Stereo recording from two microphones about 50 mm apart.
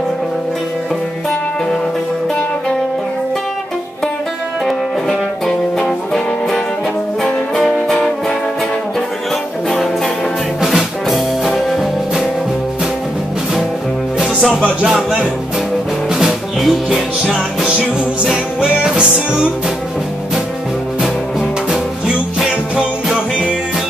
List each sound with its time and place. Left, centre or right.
5.5 s music: centre
10.6 s music: centre
14.2 s music: centre
16.1 s music: centre
23.0 s music: centre